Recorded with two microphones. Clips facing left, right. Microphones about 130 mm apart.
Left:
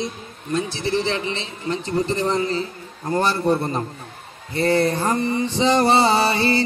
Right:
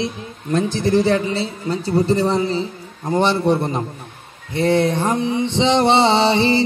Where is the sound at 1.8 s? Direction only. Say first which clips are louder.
Right 6 dB; 5° right (ahead or behind).